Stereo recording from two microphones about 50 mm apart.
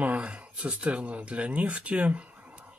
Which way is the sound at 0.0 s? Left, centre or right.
Right.